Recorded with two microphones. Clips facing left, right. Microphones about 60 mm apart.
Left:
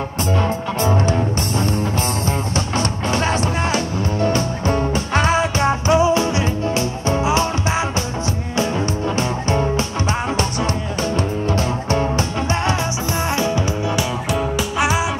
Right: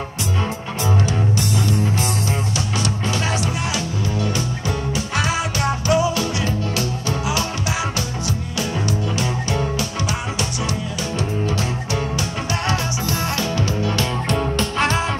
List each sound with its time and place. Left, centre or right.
0.4 s music: left
9.1 s music: left
11.1 s music: left
13.4 s music: left
14.3 s music: centre